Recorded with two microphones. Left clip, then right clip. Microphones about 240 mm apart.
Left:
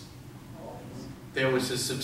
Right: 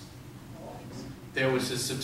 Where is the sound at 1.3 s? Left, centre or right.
Left.